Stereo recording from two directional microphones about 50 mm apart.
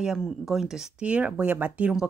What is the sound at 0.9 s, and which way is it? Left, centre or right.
Speech, right.